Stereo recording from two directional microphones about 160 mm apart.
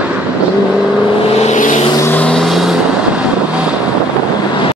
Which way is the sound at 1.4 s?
50° left (ahead or behind).